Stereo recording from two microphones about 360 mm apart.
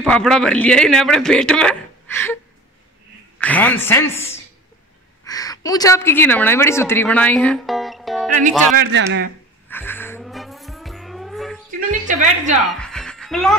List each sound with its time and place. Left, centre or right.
0.0 s speech: centre
3.3 s speech: centre
5.2 s a woman's voice: centre
8.4 s a man's voice: right
9.7 s music: centre
12.1 s a woman's voice: centre
12.6 s music: centre